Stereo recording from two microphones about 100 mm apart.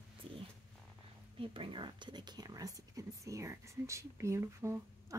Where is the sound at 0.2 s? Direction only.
60° right (ahead or behind).